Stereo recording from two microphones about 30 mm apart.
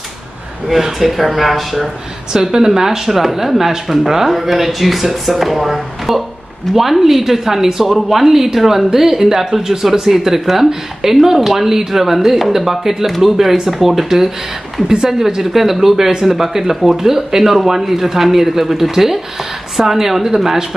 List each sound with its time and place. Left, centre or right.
0.7 s speech: centre
2.3 s speech: centre